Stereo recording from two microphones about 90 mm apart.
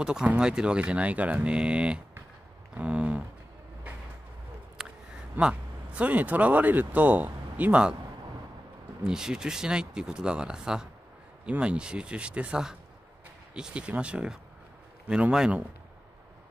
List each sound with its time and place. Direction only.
0.0 s speech: 10° right (ahead or behind)
4.8 s a sound: 5° right (ahead or behind)
5.3 s speech: 10° right (ahead or behind)
9.0 s speech: 10° right (ahead or behind)